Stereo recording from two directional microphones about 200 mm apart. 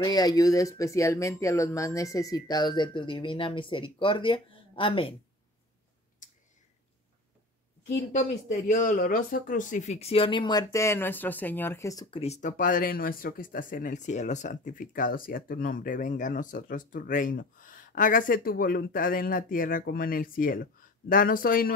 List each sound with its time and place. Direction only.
0.0 s speech: 20° left (ahead or behind)
6.2 s clicking: 40° left (ahead or behind)
8.1 s speech: 35° left (ahead or behind); by 12.2 s 20° left (ahead or behind)
12.2 s speech: 35° left (ahead or behind)